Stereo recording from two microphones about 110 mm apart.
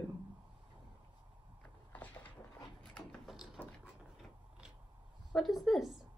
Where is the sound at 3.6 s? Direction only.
15° left (ahead or behind).